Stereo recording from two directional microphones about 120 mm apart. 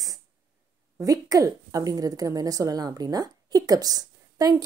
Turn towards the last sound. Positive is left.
turn(degrees=-30)  # may be behind; listen again after turning